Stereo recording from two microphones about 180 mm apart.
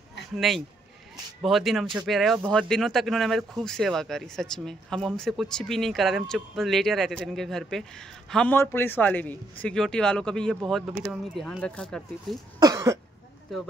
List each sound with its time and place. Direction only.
0.4 s speech: centre (ahead or behind)
12.5 s cough: 20° right (ahead or behind)